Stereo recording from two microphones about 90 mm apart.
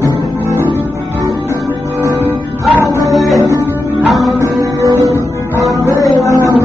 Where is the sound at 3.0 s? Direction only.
Centre (ahead or behind).